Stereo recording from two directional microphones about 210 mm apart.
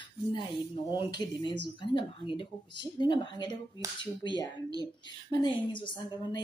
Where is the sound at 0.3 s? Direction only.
20° left (ahead or behind).